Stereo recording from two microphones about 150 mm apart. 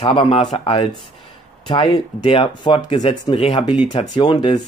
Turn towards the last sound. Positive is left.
turn(degrees=30)  # may be behind; listen again after turning